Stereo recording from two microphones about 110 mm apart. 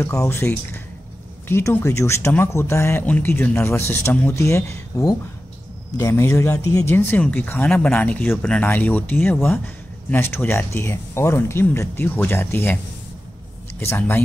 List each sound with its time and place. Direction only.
0.0 s speech: 25° left (ahead or behind)
13.7 s speech: 20° left (ahead or behind)